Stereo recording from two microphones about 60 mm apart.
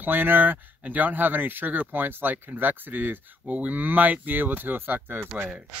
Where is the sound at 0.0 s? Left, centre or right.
Right.